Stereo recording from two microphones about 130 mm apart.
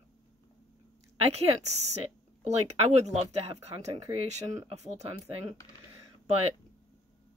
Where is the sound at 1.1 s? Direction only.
55° right (ahead or behind).